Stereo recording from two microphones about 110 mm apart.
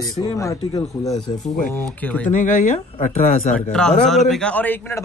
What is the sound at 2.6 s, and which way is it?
Speech, 90° left.